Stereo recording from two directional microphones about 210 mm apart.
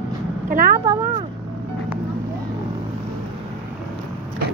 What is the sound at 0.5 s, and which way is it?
Vehicle, 45° right (ahead or behind).